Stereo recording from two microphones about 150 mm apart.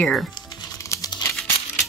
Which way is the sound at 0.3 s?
30° left (ahead or behind).